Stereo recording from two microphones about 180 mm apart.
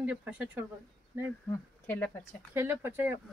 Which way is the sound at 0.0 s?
10° right (ahead or behind).